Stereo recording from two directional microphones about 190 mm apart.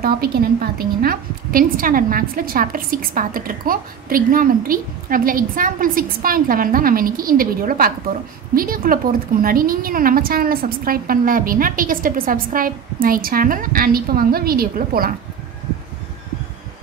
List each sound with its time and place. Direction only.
0.0 s a woman's voice: 55° right (ahead or behind)